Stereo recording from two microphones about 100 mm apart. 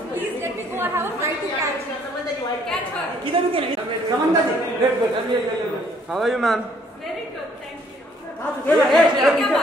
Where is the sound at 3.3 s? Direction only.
60° right (ahead or behind).